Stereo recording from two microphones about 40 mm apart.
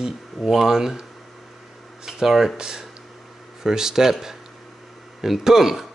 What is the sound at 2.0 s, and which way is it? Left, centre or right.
Speech, centre.